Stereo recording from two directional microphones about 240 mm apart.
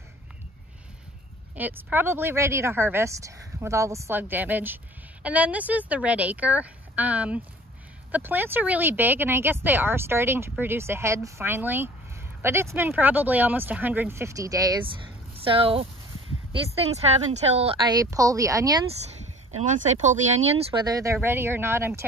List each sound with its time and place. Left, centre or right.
1.5 s speech: centre
16.9 s speech: right
19.5 s speech: right; by 22.0 s centre